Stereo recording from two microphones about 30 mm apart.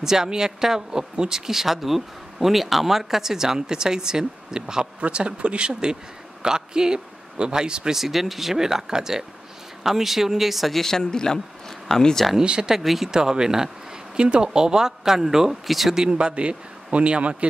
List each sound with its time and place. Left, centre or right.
0.0 s speech: centre
1.3 s speech: centre
5.1 s a man's voice: right
5.7 s a man's voice: right
7.9 s speech: centre
8.5 s speech: centre
10.7 s speech: centre
12.8 s speech: centre
13.1 s speech: right
14.1 s speech: right
14.4 s speech: right
15.6 s speech: centre
16.1 s a man's voice: right